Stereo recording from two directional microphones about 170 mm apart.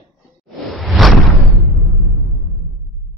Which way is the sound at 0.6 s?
Centre (ahead or behind).